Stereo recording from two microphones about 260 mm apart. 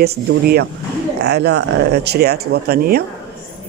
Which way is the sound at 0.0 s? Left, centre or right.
Right.